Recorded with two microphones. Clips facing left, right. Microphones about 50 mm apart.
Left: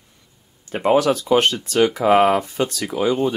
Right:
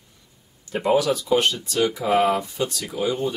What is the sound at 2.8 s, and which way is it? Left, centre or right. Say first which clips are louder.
Speech: left 6 dB; left.